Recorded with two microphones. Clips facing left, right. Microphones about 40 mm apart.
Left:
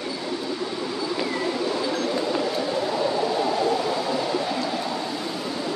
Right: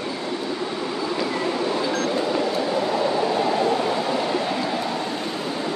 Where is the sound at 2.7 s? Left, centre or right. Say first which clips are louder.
Right 2 dB; right.